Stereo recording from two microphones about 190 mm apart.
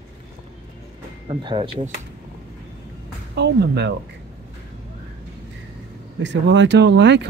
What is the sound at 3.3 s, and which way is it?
Speech, 65° right (ahead or behind).